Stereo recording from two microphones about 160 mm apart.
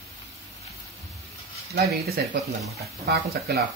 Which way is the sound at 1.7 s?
80° right.